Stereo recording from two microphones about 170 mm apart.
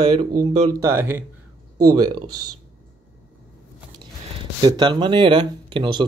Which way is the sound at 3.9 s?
30° right (ahead or behind).